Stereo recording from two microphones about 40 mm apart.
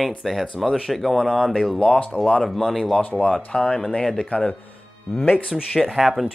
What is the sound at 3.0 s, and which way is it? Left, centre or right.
Speech, left.